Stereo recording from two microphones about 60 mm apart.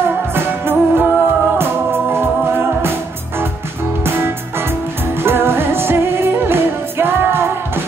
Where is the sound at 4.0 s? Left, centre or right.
Right.